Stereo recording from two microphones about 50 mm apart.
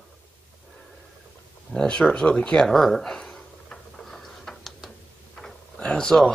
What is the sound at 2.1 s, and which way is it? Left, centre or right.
Speech, centre.